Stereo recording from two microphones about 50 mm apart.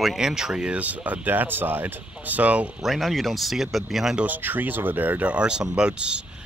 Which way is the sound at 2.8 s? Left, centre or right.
Centre.